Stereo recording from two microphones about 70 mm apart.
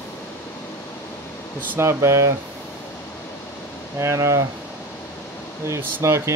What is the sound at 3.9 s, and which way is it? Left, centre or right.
Speech, right.